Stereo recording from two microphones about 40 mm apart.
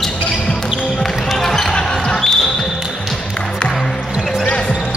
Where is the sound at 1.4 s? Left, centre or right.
Centre.